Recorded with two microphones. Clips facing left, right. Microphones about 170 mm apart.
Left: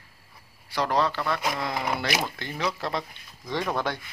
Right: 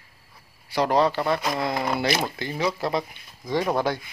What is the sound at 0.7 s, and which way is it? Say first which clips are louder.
A man's voice: right 4 dB; 20° right (ahead or behind).